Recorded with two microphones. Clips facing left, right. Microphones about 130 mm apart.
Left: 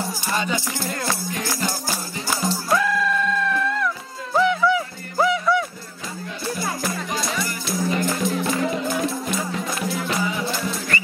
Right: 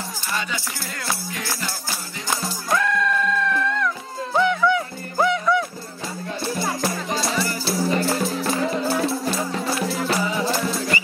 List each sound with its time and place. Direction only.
0.3 s music: 35° left (ahead or behind)
2.7 s music: 5° left (ahead or behind)
6.4 s music: 30° right (ahead or behind)